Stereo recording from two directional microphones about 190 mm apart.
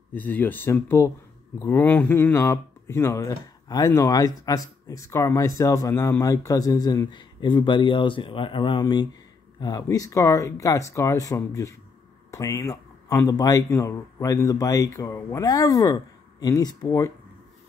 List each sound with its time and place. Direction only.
0.1 s a man's voice: 10° left (ahead or behind)